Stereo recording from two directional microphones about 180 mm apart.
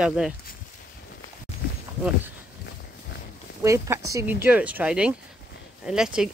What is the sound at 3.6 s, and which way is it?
Speech, 15° right (ahead or behind).